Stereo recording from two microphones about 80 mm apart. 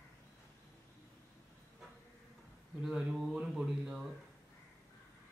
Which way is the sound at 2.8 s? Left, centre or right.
Centre.